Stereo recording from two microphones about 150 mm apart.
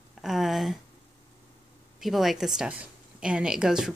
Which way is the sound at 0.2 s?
Centre (ahead or behind).